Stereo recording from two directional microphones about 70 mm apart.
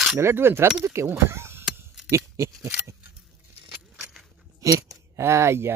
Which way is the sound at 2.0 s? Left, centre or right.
Right.